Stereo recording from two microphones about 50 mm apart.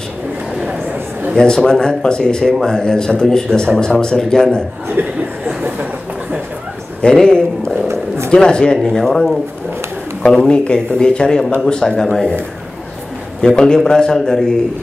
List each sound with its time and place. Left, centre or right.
1.3 s a man's voice: centre
5.0 s speech: right
7.0 s a man's voice: centre
10.5 s a man's voice: centre
13.4 s a man's voice: centre